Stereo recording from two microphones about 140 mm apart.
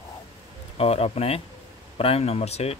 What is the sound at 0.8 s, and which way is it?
Speech, 45° left (ahead or behind).